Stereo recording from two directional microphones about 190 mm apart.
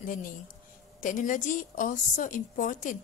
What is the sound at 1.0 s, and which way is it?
A woman's voice, 45° left (ahead or behind).